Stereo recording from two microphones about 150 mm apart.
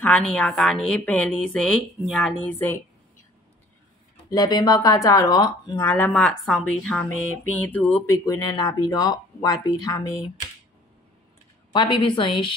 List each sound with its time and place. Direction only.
0.0 s a woman's voice: 5° left (ahead or behind)
4.3 s speech: 25° left (ahead or behind)
5.8 s a woman's voice: 15° left (ahead or behind)
8.3 s speech: 25° left (ahead or behind)
11.7 s a woman's voice: 30° left (ahead or behind)